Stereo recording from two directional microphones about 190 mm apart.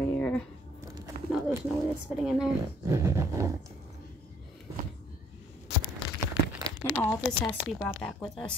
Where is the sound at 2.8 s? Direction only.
15° right (ahead or behind).